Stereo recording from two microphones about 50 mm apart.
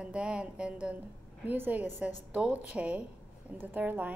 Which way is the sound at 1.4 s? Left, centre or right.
Right.